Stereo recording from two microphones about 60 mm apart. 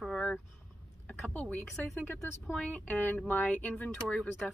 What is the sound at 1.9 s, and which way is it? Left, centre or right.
Speech, left.